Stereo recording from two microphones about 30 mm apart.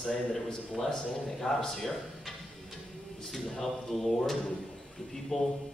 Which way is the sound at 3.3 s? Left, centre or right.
Centre.